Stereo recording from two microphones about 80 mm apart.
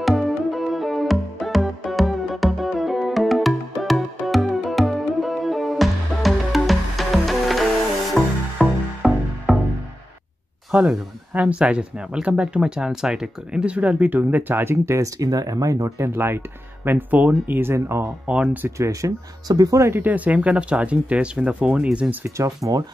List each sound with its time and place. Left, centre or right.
0.0 s music: centre
10.7 s speech: centre; by 18.1 s right
18.2 s speech: centre
18.8 s speech: right
19.9 s speech: right
22.4 s speech: right